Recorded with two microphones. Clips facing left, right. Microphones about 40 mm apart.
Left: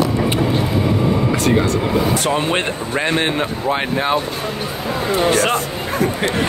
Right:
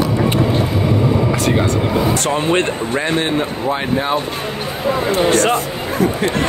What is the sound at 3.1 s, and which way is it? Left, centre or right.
Speech, left.